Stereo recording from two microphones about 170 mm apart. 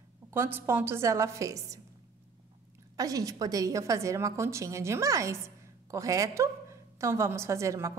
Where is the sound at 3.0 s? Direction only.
20° right (ahead or behind).